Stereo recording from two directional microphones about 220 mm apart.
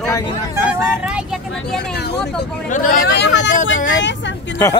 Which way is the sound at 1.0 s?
5° right (ahead or behind).